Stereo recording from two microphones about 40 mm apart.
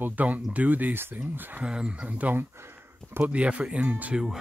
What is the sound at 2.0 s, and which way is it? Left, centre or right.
Speech, right.